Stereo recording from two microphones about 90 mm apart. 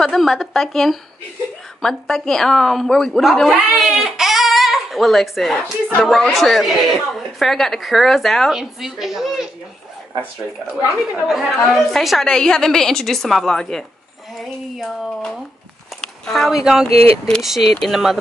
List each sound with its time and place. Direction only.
0.0 s a woman's voice: 5° left (ahead or behind)
11.2 s a woman's voice: 5° right (ahead or behind)
16.9 s speech: 90° right
17.4 s a woman's voice: 5° right (ahead or behind)